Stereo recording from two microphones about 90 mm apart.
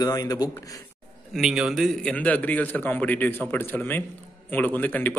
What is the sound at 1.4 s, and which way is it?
Speech, 5° right (ahead or behind).